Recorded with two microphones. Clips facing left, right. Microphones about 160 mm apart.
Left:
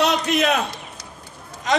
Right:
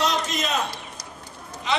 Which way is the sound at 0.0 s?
65° left (ahead or behind).